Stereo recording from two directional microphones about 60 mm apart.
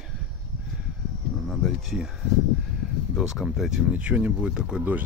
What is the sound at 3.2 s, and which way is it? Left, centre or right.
Speech, centre.